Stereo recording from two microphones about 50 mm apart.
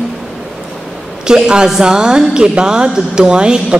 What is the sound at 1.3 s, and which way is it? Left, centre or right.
A woman's voice, centre.